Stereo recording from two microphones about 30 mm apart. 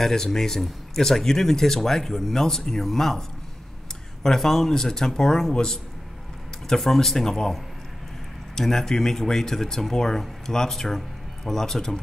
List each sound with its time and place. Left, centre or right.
0.0 s speech: centre
6.8 s speech: centre
8.5 s speech: centre